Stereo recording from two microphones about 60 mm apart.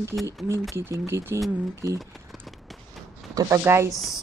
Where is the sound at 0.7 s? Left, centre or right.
Right.